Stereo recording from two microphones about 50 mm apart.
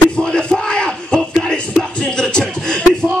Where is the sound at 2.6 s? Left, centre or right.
Centre.